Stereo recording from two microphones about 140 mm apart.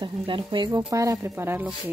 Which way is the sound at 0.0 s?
35° right (ahead or behind).